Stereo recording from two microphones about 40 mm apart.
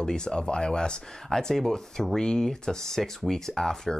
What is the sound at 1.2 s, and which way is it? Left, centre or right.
Speech, centre.